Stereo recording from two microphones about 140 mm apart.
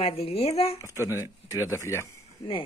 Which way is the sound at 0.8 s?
20° left (ahead or behind).